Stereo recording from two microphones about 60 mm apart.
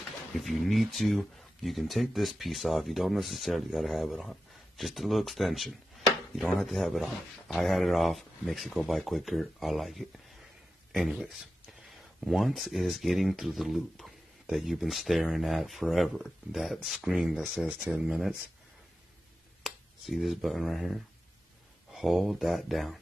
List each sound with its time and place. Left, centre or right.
0.4 s speech: centre
17.7 s speech: centre
19.6 s speech: centre